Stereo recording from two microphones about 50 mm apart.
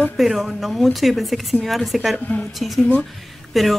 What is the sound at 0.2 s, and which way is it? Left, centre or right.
Speech, centre.